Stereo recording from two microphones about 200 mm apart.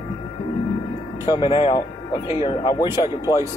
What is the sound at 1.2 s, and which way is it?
Speech, 25° left (ahead or behind).